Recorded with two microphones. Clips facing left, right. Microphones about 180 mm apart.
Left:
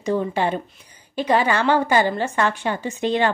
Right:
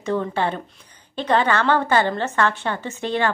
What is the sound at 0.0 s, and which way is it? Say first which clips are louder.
A woman's voice: left 1 dB; 15° left (ahead or behind).